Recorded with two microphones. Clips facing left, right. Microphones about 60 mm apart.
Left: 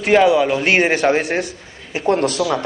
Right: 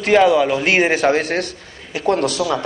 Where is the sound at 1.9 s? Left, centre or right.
Left.